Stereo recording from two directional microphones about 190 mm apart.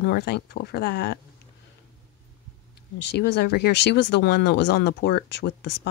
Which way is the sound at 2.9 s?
65° left (ahead or behind).